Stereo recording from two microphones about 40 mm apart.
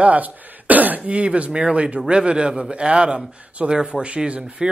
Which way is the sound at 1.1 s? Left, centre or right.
Right.